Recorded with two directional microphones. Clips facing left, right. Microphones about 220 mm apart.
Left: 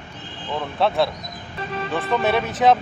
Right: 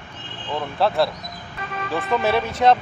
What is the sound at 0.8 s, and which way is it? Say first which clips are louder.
Speech: even; centre (ahead or behind).